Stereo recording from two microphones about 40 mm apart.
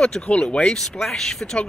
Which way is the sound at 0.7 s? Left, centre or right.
Centre.